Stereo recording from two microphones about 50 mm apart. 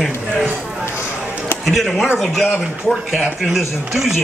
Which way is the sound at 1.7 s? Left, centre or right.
Centre.